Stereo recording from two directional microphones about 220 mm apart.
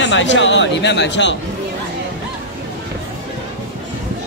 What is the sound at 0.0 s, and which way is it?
Speech, 55° left (ahead or behind).